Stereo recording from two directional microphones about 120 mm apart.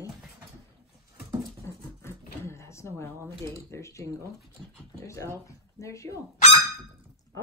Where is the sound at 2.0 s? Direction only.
20° left (ahead or behind).